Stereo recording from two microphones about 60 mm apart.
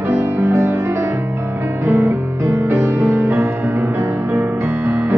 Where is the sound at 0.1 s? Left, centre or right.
Right.